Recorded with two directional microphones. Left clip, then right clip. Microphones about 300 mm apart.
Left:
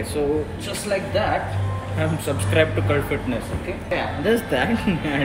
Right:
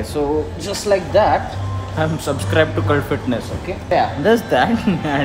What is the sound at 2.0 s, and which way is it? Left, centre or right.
Speech, centre.